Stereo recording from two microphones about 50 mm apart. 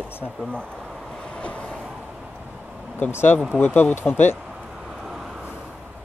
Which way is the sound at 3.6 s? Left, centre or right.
Left.